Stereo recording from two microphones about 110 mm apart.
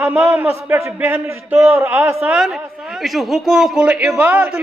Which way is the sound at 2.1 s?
5° right (ahead or behind).